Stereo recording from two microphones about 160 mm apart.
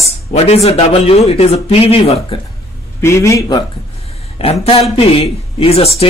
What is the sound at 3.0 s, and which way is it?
Speech, 20° left (ahead or behind).